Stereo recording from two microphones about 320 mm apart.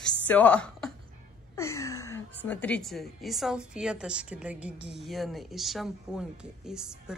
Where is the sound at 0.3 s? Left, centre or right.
Centre.